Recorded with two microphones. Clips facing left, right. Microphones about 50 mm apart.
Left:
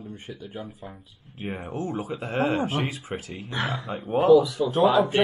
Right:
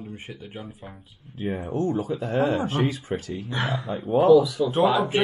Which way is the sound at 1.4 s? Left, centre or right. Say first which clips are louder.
Right 5 dB; left.